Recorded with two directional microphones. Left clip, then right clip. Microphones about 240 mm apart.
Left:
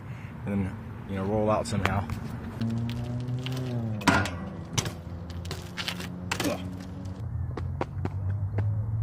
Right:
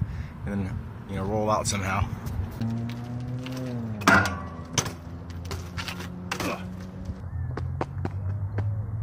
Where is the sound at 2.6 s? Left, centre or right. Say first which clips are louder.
Even; left.